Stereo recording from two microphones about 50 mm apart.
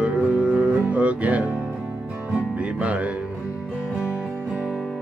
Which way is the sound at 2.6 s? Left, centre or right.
Right.